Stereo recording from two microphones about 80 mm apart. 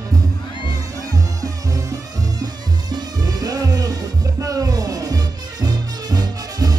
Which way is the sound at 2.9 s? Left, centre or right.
Right.